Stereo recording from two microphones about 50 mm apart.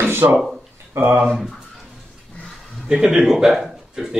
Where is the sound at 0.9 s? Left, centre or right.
Right.